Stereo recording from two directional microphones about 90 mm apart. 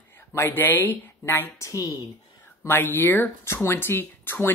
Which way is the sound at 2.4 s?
25° left (ahead or behind).